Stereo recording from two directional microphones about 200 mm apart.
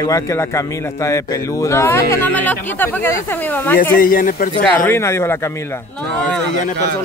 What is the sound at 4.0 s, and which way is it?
Speech, 45° left (ahead or behind).